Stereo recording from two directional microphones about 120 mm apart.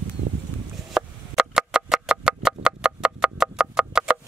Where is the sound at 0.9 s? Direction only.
5° right (ahead or behind).